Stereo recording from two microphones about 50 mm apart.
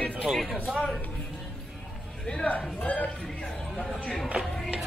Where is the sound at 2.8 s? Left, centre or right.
Left.